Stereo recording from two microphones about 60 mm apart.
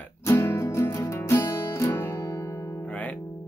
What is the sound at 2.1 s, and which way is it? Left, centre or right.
Music, left.